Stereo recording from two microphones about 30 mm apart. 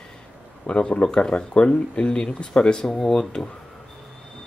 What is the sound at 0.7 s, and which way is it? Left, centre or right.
Speech, left.